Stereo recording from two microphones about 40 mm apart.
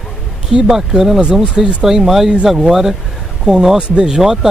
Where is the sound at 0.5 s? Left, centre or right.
Centre.